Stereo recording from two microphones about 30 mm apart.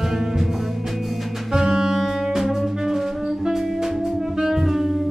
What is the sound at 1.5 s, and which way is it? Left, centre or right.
Saxophone, right.